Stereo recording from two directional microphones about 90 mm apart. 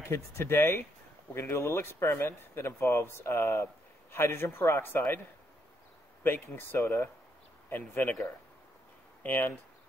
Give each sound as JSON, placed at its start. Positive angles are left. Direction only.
{"t": 0.0, "sound": "speech", "side_deg": 30}
{"t": 6.2, "sound": "speech", "side_deg": 25}
{"t": 9.2, "sound": "speech", "side_deg": 20}